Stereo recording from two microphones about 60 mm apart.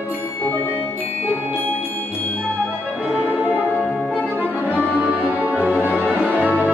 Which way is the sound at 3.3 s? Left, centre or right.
Right.